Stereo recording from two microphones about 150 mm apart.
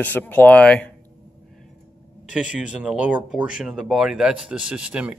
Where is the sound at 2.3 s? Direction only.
5° right (ahead or behind).